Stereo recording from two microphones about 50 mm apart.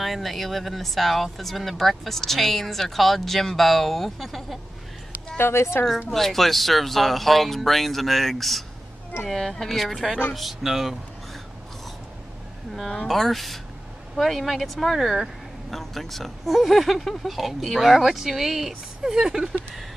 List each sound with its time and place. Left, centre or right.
0.0 s speech: centre
5.4 s a woman's voice: left
6.0 s speech: centre
12.9 s speech: centre